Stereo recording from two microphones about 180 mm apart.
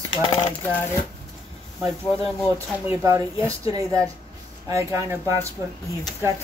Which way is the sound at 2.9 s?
15° right (ahead or behind).